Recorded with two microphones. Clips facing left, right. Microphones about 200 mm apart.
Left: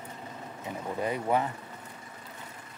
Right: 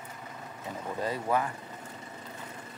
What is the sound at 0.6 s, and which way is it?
Speech, 15° left (ahead or behind).